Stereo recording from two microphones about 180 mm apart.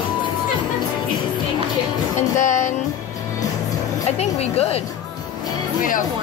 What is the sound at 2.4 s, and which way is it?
Music, 45° left (ahead or behind).